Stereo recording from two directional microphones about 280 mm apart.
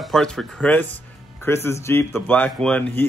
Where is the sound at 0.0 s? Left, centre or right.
Centre.